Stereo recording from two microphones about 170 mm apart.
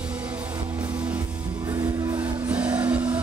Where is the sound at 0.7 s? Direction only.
25° right (ahead or behind).